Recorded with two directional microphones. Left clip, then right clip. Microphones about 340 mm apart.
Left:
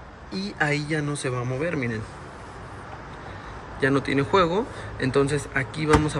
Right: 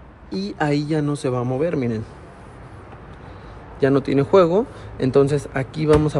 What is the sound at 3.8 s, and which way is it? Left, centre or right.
Speech, centre.